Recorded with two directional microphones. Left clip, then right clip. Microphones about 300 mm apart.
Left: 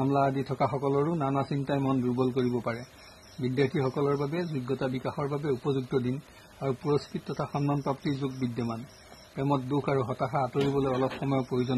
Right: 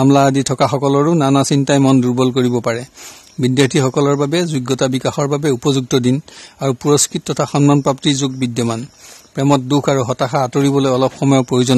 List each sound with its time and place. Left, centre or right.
0.0 s speech: right